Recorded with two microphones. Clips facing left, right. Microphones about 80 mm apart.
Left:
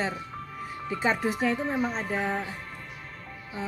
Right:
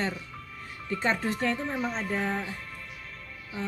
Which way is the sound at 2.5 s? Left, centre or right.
Left.